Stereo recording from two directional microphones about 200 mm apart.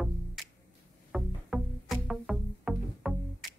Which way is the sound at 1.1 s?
Centre (ahead or behind).